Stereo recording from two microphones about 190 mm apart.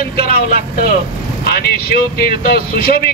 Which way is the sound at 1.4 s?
55° left (ahead or behind).